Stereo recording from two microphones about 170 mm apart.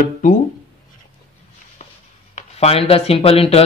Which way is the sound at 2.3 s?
35° left (ahead or behind).